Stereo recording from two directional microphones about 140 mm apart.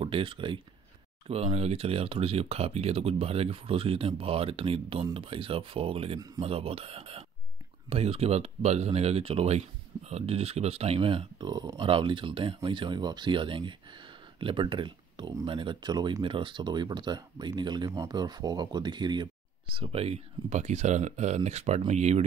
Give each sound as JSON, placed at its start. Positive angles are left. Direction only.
{"t": 0.0, "sound": "speech", "side_deg": -40}
{"t": 19.7, "sound": "speech", "side_deg": -45}